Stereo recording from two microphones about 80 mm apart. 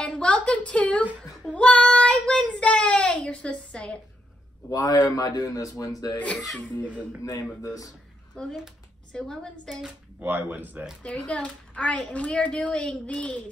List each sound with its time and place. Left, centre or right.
0.0 s a sound: centre
1.5 s child singing: centre
4.6 s a man's voice: left
6.1 s a child's voice: centre
8.4 s a child's voice: centre
10.2 s speech: right
11.0 s a child's voice: centre